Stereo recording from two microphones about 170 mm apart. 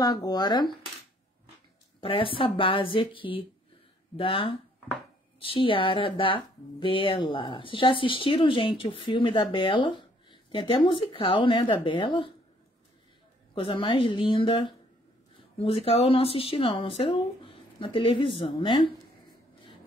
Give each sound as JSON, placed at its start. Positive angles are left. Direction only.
{"t": 0.0, "sound": "speech", "side_deg": 20}
{"t": 2.0, "sound": "speech", "side_deg": 30}
{"t": 13.6, "sound": "speech", "side_deg": 30}